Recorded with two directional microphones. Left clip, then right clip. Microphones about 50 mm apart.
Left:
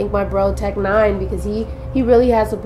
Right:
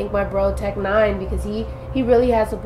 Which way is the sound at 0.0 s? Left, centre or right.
Left.